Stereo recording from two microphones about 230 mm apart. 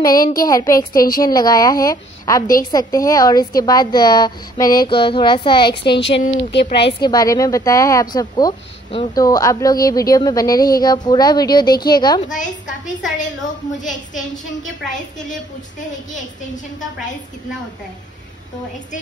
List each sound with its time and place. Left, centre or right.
0.0 s a woman's voice: centre
0.9 s a woman's voice: left
1.2 s a woman's voice: centre
5.7 s speech: left
6.9 s a woman's voice: centre
12.3 s a woman's voice: left